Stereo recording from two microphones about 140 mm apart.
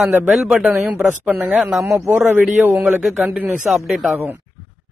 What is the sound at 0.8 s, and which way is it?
A woman's voice, 15° right (ahead or behind).